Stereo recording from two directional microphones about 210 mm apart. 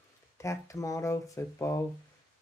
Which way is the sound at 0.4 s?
15° left (ahead or behind).